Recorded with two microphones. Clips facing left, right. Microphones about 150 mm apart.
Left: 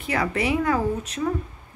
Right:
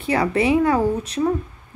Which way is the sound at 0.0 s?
30° right (ahead or behind).